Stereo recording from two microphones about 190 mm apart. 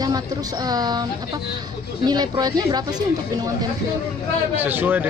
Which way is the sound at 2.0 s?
20° right (ahead or behind).